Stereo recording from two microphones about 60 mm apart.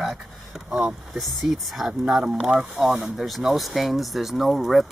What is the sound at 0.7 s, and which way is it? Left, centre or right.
Speech, centre.